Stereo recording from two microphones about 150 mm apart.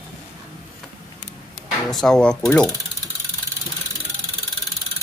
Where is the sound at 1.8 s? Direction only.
5° left (ahead or behind).